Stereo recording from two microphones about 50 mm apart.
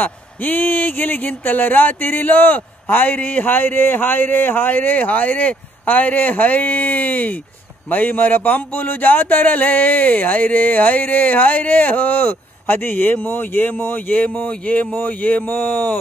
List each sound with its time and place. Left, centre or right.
0.0 s speech: left